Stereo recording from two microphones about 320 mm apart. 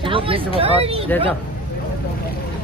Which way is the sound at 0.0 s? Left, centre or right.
Centre.